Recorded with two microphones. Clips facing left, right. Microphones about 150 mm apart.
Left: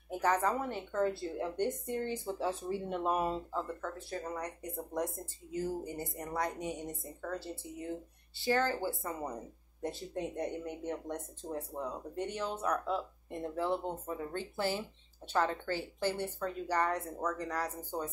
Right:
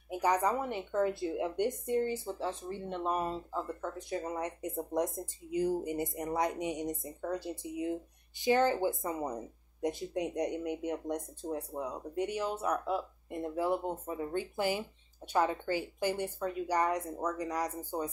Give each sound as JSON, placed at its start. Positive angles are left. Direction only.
{"t": 0.1, "sound": "speech", "side_deg": -10}
{"t": 1.9, "sound": "speech", "side_deg": 0}
{"t": 3.5, "sound": "speech", "side_deg": -15}